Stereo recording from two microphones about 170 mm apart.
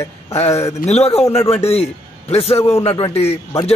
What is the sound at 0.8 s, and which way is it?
A man's voice, 40° left (ahead or behind).